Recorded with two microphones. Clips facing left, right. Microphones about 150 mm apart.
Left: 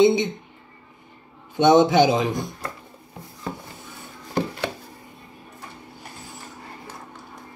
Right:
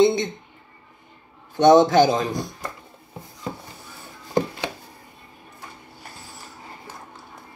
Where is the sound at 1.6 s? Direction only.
40° right (ahead or behind).